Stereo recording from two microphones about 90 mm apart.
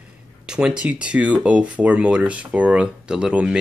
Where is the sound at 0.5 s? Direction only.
10° right (ahead or behind).